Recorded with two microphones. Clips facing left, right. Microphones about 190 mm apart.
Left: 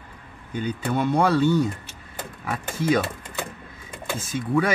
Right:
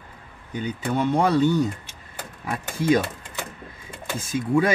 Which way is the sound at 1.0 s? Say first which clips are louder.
Even; 20° right (ahead or behind).